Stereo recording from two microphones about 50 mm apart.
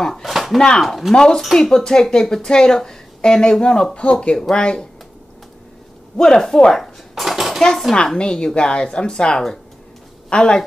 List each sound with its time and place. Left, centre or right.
0.0 s speech: centre
0.3 s slap: centre
0.7 s speech: centre
1.1 s a woman's voice: centre
6.1 s a woman's voice: centre
7.2 s dishes: centre
7.9 s a woman's voice: centre